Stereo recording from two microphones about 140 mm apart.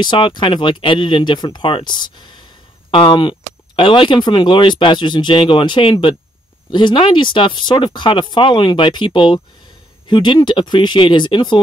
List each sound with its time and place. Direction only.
0.0 s speech: 35° left (ahead or behind)